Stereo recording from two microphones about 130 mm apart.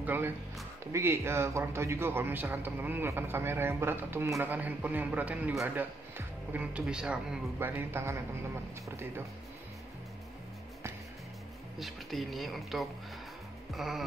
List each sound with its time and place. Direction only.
0.0 s a man's voice: 15° right (ahead or behind)
7.5 s a man's voice: 15° right (ahead or behind)
11.8 s speech: centre (ahead or behind)